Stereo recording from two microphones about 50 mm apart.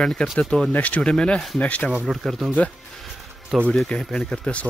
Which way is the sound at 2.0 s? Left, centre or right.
Centre.